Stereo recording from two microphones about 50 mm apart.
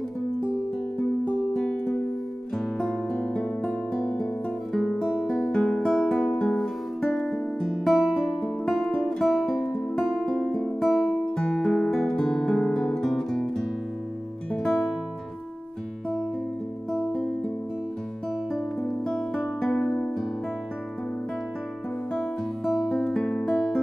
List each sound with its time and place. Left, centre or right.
0.9 s music: left
2.5 s music: centre
3.2 s music: centre
4.0 s guitar: centre
5.2 s music: centre
11.3 s music: centre
12.7 s guitar: centre
14.6 s music: centre
17.1 s music: centre
19.6 s music: centre
19.9 s music: left
22.8 s music: centre
23.4 s music: centre